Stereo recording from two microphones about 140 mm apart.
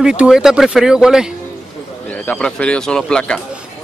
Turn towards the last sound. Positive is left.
turn(degrees=5)  # may be behind; listen again after turning